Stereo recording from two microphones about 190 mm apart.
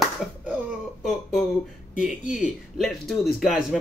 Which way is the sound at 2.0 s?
5° right (ahead or behind).